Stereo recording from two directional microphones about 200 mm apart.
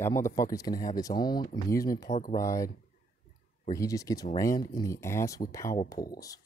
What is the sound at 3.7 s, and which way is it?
Speech, 15° left (ahead or behind).